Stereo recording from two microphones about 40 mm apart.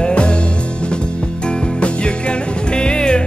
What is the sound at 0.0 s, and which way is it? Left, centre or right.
Music, left.